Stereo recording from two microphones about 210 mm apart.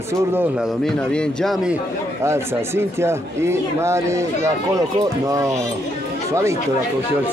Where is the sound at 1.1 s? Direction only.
5° left (ahead or behind).